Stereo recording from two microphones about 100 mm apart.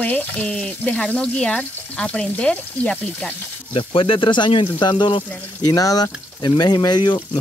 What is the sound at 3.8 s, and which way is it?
Speech, 60° left (ahead or behind).